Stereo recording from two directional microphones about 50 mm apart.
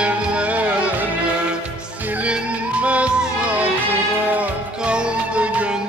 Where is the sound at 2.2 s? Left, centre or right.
Right.